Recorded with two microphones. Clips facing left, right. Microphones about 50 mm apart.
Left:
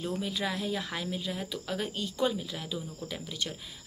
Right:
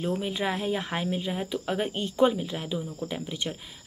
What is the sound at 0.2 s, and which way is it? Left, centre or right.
Speech, right.